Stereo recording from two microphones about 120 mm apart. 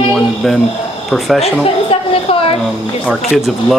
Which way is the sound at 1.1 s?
Centre (ahead or behind).